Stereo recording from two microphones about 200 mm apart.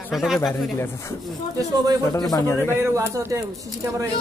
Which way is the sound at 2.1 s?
20° left (ahead or behind).